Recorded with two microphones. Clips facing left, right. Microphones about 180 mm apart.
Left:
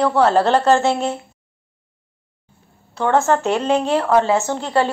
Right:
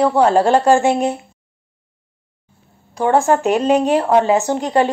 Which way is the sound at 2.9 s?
15° right (ahead or behind).